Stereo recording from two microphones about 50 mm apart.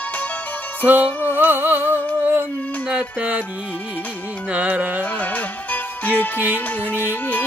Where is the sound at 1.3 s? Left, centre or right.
Right.